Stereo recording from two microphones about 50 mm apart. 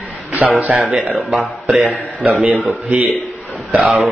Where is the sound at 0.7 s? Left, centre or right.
Centre.